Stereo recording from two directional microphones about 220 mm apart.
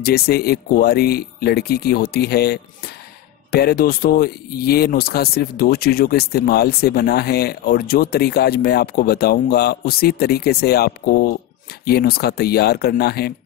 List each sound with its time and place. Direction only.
0.0 s speech: 45° left (ahead or behind)